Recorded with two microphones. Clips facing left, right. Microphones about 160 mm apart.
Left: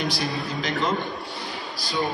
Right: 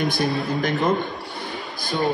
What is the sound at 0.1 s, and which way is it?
Speech, 55° right (ahead or behind).